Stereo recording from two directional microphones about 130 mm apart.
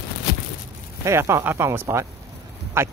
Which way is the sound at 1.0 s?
20° right (ahead or behind).